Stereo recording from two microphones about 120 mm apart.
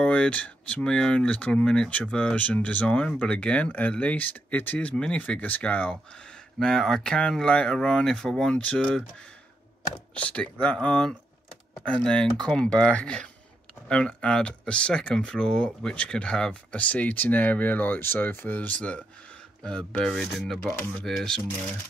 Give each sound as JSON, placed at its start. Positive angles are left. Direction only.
{"t": 0.0, "sound": "speech", "side_deg": 10}
{"t": 10.1, "sound": "speech", "side_deg": 10}